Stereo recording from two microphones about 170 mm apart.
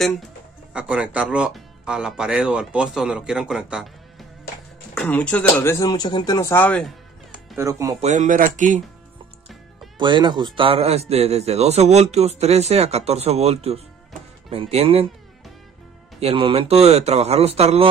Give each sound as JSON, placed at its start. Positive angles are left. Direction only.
{"t": 0.7, "sound": "speech", "side_deg": -5}
{"t": 5.0, "sound": "speech", "side_deg": 10}
{"t": 7.5, "sound": "speech", "side_deg": -20}
{"t": 8.0, "sound": "speech", "side_deg": -45}
{"t": 9.9, "sound": "a man's voice", "side_deg": -30}
{"t": 16.2, "sound": "a man's voice", "side_deg": -35}